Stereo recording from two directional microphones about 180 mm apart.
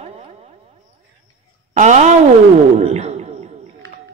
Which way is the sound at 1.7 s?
40° right (ahead or behind).